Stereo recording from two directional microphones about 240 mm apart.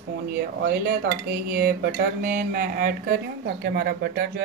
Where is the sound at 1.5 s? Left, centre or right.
Right.